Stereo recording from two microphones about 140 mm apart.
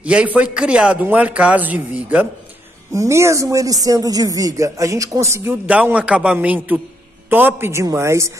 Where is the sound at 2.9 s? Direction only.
20° right (ahead or behind).